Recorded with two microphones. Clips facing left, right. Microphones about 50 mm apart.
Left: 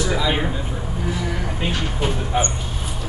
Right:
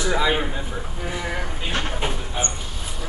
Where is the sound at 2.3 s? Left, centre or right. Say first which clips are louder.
Left 7 dB; left.